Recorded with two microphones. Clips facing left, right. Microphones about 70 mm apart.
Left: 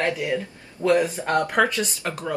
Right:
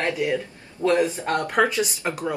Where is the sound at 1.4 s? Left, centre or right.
Centre.